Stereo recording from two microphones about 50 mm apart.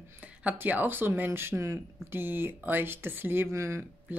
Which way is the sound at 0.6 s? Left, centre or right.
Right.